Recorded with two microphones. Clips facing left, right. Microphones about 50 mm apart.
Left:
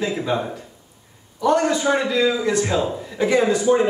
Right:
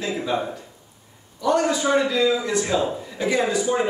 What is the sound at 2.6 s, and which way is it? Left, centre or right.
A man's voice, centre.